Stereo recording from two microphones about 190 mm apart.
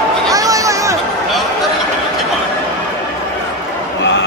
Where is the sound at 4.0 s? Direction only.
70° left (ahead or behind).